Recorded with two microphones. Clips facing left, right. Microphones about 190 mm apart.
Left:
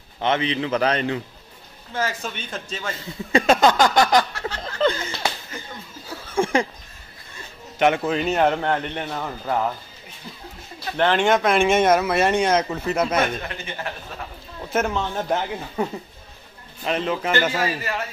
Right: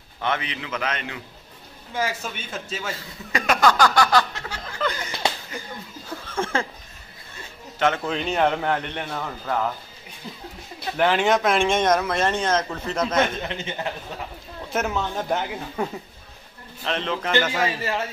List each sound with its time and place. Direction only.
0.2 s a man's voice: 25° left (ahead or behind)
2.0 s a man's voice: 10° right (ahead or behind)
3.3 s a sound: 25° left (ahead or behind)
5.5 s slap: 25° left (ahead or behind)
6.0 s a sound: 10° left (ahead or behind)
7.8 s speech: 15° left (ahead or behind)
8.1 s a man's voice: 5° left (ahead or behind)
11.0 s speech: 5° right (ahead or behind)
13.4 s a man's voice: 20° right (ahead or behind)
14.7 s a man's voice: centre (ahead or behind)